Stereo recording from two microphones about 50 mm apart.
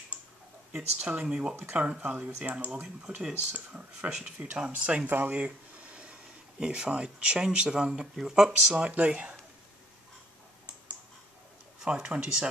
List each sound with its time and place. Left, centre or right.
0.7 s speech: centre
1.1 s speech: right
5.1 s a sound: right
6.6 s speech: centre
8.7 s speech: right
11.8 s speech: centre